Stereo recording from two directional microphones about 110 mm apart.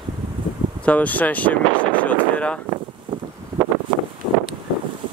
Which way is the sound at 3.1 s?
50° right (ahead or behind).